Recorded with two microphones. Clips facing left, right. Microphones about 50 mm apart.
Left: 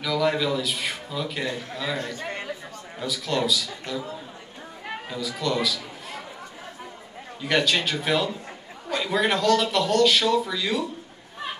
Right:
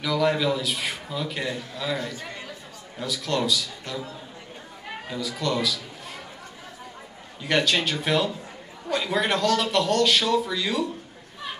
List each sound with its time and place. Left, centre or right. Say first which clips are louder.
0.0 s a man's voice: right 1 dB; centre
2.1 s chatter: left 4 dB; left
3.0 s a man's voice: even; centre
5.1 s a man's voice: even; centre
7.4 s a man's voice: even; centre